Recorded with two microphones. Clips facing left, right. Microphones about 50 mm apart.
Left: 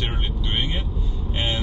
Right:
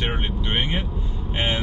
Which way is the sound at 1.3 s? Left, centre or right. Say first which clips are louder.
Right 2 dB; right.